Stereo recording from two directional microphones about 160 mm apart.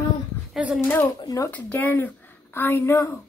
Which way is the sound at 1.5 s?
10° left (ahead or behind).